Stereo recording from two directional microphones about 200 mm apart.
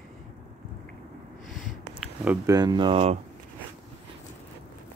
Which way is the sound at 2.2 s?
15° right (ahead or behind).